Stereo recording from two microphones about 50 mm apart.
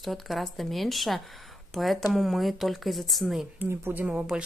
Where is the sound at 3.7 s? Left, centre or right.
Right.